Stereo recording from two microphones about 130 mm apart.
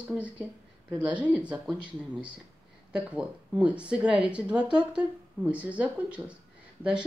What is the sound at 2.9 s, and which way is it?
Speech, 10° right (ahead or behind).